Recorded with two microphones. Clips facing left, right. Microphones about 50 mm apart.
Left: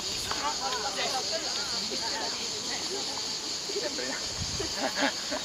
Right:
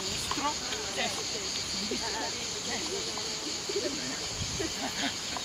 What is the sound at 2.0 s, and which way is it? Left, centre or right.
Speech, centre.